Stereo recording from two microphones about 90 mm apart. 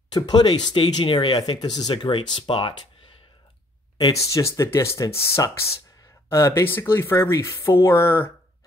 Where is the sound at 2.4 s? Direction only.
70° left (ahead or behind).